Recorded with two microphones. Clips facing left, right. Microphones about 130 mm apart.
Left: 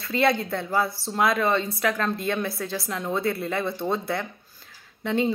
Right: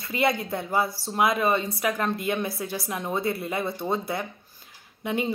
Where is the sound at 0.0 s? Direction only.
15° right (ahead or behind).